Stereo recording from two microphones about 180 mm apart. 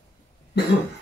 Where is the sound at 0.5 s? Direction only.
70° left (ahead or behind).